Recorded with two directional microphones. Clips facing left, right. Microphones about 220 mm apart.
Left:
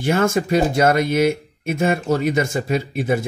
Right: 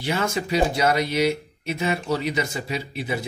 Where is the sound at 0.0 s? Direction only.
50° left (ahead or behind).